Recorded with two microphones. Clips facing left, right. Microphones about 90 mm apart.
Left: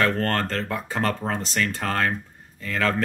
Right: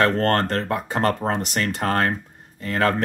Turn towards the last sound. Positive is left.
turn(degrees=-45)  # may be behind; listen again after turning